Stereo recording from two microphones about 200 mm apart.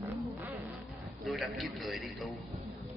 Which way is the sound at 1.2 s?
Centre (ahead or behind).